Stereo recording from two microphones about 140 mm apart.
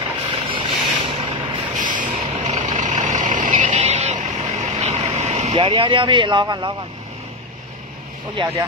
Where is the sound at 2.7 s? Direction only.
65° right (ahead or behind); by 6.4 s 35° right (ahead or behind).